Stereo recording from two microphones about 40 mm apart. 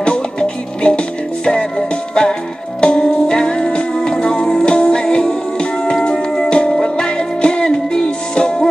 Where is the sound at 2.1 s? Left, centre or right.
Left.